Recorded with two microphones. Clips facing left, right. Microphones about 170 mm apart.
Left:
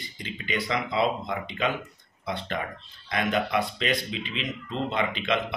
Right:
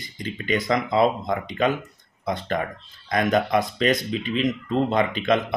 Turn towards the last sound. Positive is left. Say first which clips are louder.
# right 6 dB
turn(degrees=-45)  # may be behind; listen again after turning